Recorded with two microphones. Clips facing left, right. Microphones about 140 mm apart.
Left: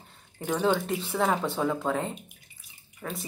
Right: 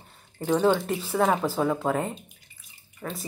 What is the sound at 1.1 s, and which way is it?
Speech, 15° right (ahead or behind).